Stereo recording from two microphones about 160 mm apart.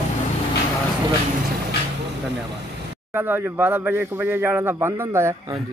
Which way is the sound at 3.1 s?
10° right (ahead or behind).